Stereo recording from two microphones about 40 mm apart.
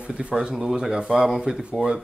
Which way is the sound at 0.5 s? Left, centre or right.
Centre.